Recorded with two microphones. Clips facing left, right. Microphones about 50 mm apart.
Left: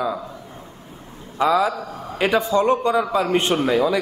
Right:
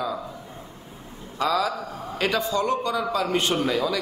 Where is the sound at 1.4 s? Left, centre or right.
Left.